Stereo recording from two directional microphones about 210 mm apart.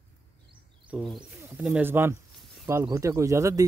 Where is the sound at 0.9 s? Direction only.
Centre (ahead or behind).